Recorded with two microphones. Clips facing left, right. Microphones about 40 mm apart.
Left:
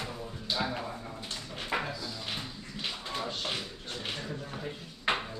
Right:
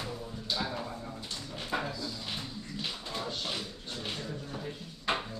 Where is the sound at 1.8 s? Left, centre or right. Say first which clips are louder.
Even; centre.